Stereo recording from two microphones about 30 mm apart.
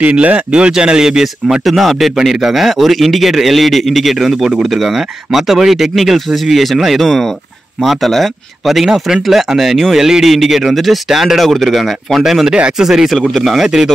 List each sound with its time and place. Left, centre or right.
0.0 s speech: right
0.5 s a man's voice: right
1.6 s speech: centre
2.8 s speech: centre
4.6 s speech: centre
7.0 s speech: centre
11.1 s speech: centre
11.3 s speech: centre
11.7 s speech: centre
13.3 s speech: centre
13.6 s speech: centre